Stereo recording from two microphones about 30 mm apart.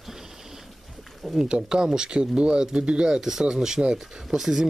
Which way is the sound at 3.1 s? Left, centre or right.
Centre.